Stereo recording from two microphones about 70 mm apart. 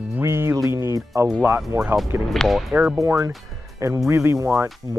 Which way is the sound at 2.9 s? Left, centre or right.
Right.